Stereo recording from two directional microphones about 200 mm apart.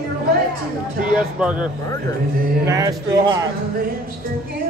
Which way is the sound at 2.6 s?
15° right (ahead or behind).